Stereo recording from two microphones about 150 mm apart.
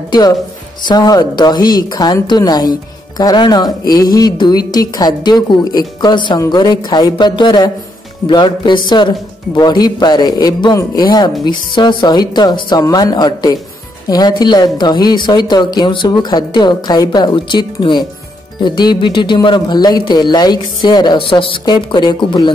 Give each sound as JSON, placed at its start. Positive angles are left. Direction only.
{"t": 0.8, "sound": "speech", "side_deg": 25}